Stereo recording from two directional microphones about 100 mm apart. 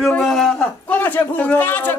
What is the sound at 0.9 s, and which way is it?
A man's voice, 20° left (ahead or behind).